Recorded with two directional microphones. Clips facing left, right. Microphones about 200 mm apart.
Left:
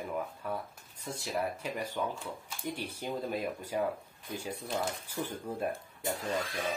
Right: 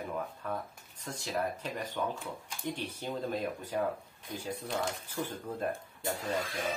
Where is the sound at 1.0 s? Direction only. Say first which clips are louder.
Even; 10° left (ahead or behind).